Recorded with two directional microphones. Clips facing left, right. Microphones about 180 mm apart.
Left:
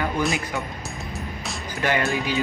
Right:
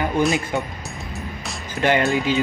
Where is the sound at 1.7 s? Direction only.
20° right (ahead or behind).